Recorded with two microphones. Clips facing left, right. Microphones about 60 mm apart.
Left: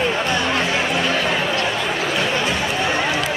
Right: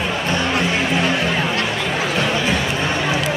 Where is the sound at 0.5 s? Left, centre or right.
Centre.